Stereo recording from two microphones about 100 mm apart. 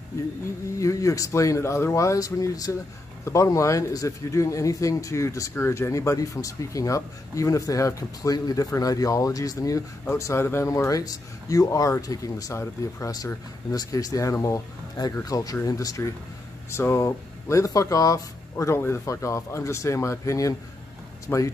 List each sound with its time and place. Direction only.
0.7 s speech: 30° left (ahead or behind)
21.3 s speech: 20° left (ahead or behind)